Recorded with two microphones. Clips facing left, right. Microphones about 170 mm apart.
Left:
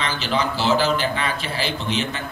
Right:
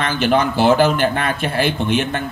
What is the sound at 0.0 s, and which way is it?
Speech, 55° right (ahead or behind).